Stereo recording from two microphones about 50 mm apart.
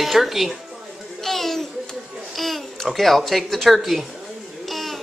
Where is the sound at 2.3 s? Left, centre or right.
Centre.